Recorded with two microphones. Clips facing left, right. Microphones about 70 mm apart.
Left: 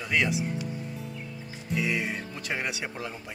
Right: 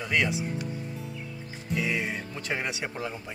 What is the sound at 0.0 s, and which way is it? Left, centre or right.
Speech, centre.